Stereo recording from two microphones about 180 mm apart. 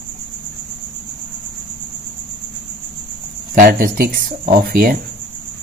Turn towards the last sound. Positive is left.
turn(degrees=-55)  # may be behind; listen again after turning